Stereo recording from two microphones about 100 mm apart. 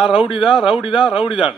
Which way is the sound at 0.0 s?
10° right (ahead or behind).